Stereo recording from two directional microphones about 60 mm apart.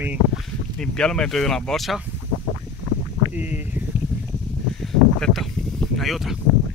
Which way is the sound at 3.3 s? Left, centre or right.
Right.